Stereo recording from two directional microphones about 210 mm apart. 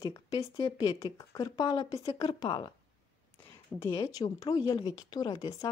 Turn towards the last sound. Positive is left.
turn(degrees=20)  # may be behind; listen again after turning